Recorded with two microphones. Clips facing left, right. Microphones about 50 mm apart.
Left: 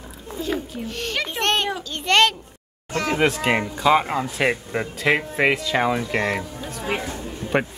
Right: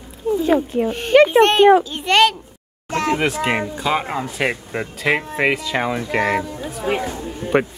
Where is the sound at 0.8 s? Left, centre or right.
Centre.